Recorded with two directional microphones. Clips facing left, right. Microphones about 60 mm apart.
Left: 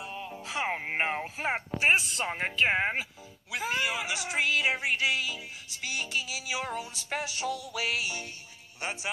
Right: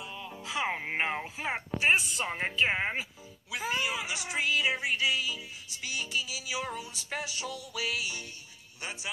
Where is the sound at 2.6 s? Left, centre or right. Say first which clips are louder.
Left 3 dB; left.